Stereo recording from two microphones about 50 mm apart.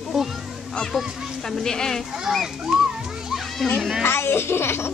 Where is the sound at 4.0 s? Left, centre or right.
Left.